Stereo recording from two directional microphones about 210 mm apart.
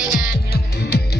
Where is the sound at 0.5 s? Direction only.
50° left (ahead or behind).